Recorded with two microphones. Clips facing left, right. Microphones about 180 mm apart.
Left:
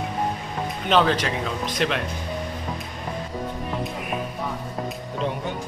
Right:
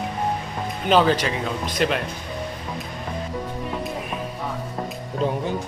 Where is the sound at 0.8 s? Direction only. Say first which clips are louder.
Right 2 dB; 5° right (ahead or behind).